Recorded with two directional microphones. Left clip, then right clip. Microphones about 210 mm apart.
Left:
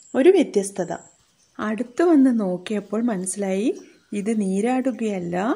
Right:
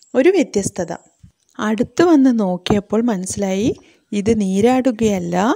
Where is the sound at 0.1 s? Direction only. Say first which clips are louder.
Right 2 dB; 45° right (ahead or behind).